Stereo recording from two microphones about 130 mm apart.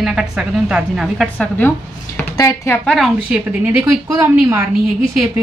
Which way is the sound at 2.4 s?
25° left (ahead or behind).